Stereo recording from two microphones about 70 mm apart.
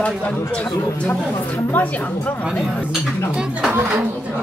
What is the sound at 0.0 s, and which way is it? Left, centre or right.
A woman's voice, centre.